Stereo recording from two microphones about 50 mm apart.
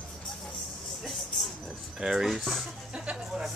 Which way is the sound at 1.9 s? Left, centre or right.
Centre.